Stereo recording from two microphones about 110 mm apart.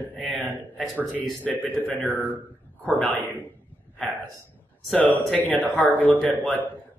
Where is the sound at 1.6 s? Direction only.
15° left (ahead or behind).